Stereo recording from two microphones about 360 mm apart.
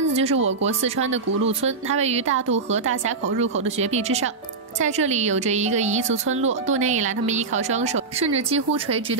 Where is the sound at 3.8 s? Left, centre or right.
Centre.